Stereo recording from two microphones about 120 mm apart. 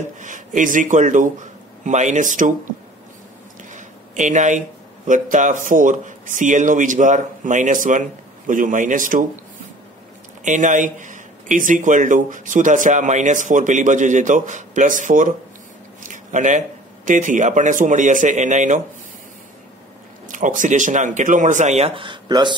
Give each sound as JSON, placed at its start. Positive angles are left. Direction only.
{"t": 0.2, "sound": "speech", "side_deg": -90}
{"t": 3.7, "sound": "speech", "side_deg": -90}
{"t": 10.4, "sound": "speech", "side_deg": -90}
{"t": 20.2, "sound": "speech", "side_deg": -90}